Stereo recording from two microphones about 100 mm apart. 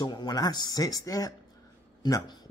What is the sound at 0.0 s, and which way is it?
Speech, 45° left (ahead or behind).